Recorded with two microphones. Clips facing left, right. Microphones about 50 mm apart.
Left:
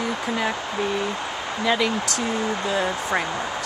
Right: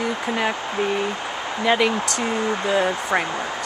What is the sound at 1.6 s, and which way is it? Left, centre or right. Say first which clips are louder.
Speech: right 3 dB; right.